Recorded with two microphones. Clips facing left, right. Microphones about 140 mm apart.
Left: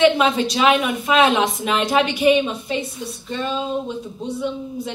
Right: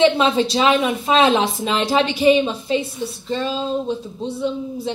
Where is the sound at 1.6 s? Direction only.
30° right (ahead or behind).